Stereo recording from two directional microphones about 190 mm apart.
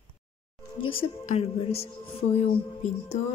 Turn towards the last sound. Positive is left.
turn(degrees=35)  # may be behind; listen again after turning